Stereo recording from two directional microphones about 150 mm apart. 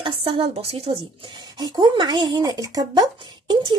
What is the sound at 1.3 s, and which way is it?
Speech, 25° right (ahead or behind).